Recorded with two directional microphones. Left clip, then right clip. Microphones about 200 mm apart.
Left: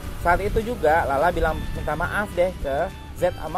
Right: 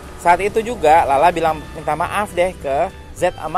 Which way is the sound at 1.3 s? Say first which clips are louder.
Right 6 dB; 15° right (ahead or behind).